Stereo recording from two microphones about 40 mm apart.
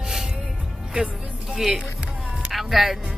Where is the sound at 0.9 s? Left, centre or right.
Right.